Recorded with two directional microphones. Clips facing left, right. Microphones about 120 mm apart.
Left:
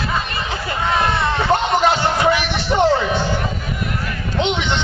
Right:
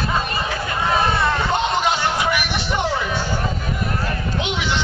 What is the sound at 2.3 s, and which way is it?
Music, 20° left (ahead or behind).